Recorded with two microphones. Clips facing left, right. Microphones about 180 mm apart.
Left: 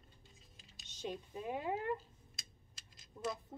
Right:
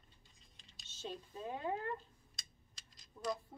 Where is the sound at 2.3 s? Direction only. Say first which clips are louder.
Left 2 dB; 5° left (ahead or behind).